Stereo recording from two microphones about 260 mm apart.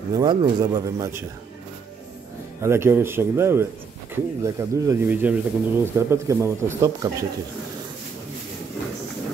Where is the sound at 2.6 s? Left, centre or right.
Centre.